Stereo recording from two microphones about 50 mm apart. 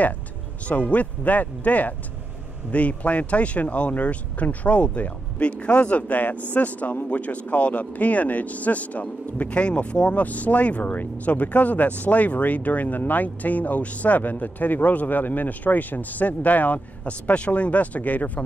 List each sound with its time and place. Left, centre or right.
0.7 s speech: left